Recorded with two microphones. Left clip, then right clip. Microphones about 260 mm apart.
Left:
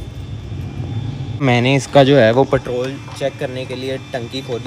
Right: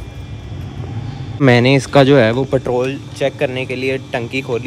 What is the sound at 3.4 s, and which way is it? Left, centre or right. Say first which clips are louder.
Speech: right 5 dB; right.